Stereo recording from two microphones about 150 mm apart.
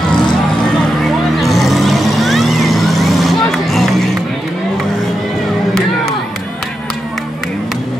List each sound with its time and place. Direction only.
1.4 s vehicle: centre (ahead or behind)